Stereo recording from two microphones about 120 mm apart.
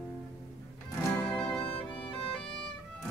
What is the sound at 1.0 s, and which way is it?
Music, 15° left (ahead or behind).